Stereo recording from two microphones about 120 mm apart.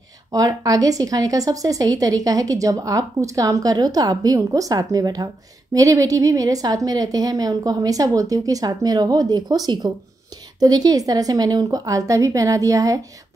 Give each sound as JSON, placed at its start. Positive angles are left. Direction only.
{"t": 0.3, "sound": "a woman's voice", "side_deg": -30}